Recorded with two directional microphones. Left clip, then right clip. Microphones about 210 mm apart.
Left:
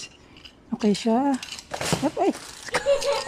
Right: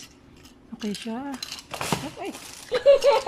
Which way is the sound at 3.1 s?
Centre (ahead or behind).